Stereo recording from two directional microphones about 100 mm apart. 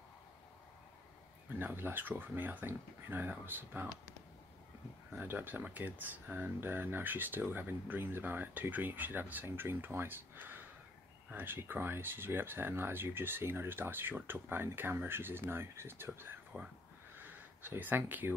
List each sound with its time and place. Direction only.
1.6 s speech: 20° right (ahead or behind)
5.1 s speech: 20° right (ahead or behind)
16.2 s whispering: 20° right (ahead or behind)
17.1 s a sound: 20° right (ahead or behind)